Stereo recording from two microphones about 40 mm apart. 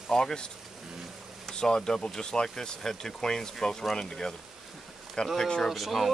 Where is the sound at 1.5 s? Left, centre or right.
Centre.